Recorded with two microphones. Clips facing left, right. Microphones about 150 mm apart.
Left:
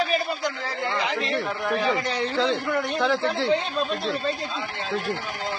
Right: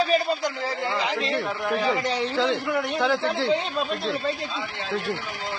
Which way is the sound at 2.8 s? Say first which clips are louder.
Even; centre (ahead or behind).